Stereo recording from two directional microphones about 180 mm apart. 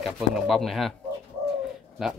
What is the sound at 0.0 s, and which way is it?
Speech, centre (ahead or behind).